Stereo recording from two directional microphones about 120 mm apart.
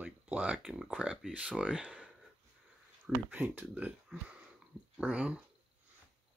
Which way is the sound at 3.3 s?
15° right (ahead or behind).